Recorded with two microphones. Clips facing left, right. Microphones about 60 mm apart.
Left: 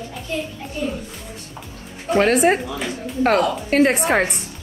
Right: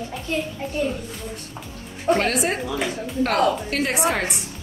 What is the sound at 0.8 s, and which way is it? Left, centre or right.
Speech, right.